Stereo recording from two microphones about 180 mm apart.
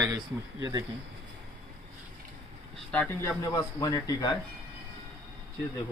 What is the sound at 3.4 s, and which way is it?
Speech, 20° left (ahead or behind).